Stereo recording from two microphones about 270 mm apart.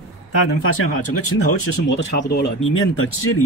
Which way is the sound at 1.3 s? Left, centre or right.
Left.